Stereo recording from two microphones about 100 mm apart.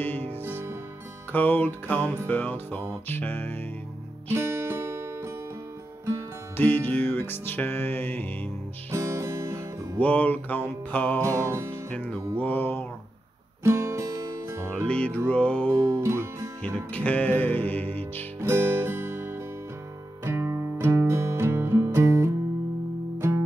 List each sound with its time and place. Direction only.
0.0 s music: 20° left (ahead or behind)
0.4 s music: 20° right (ahead or behind)
1.3 s music: 15° left (ahead or behind)
4.3 s music: 25° right (ahead or behind)
6.5 s music: 20° left (ahead or behind)
8.9 s music: 30° right (ahead or behind)
9.9 s music: 15° left (ahead or behind)
11.2 s music: 30° right (ahead or behind)
11.9 s music: 10° left (ahead or behind)
13.7 s music: 30° right (ahead or behind)
14.9 s music: 10° left (ahead or behind)
15.8 s music: 30° right (ahead or behind)
16.6 s music: 15° left (ahead or behind)
18.4 s music: 25° right (ahead or behind)